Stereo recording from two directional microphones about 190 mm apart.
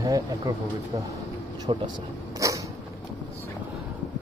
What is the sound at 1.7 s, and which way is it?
Speech, 25° right (ahead or behind).